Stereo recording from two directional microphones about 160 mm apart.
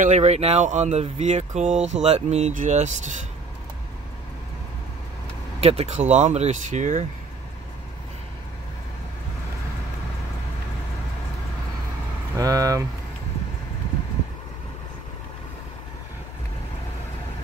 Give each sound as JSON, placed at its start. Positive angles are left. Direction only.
{"t": 0.0, "sound": "speech", "side_deg": -45}
{"t": 5.6, "sound": "speech", "side_deg": -40}
{"t": 12.4, "sound": "speech", "side_deg": -20}